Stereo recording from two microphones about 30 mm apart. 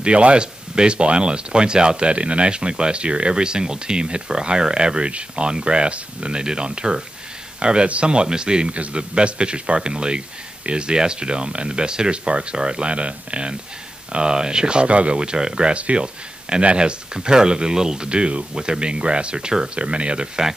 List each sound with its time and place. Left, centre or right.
0.0 s a man's voice: right
19.7 s a man's voice: right